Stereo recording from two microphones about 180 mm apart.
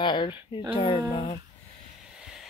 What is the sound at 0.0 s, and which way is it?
Speech, 25° left (ahead or behind).